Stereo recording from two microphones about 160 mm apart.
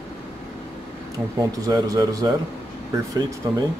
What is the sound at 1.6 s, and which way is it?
Speech, 25° right (ahead or behind).